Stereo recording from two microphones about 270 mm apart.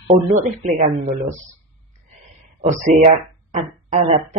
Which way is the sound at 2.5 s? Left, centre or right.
Right.